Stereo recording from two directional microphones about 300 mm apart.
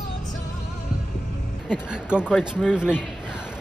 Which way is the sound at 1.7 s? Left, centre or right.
Centre.